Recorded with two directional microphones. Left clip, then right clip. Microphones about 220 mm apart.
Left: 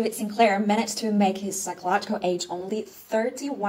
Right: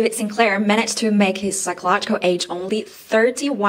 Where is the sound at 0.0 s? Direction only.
15° right (ahead or behind).